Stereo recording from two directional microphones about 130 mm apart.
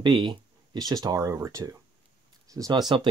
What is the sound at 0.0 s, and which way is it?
Speech, 35° right (ahead or behind).